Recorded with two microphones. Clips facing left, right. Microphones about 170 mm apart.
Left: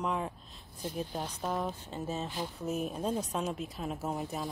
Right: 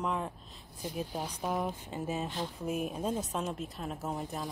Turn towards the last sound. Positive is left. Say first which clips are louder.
# left 1 dB
turn(degrees=0)  # may be behind; listen again after turning